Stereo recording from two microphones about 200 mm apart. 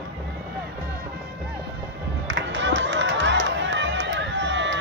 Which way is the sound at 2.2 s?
65° right (ahead or behind).